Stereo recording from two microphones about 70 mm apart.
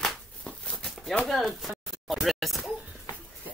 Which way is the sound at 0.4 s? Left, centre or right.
Centre.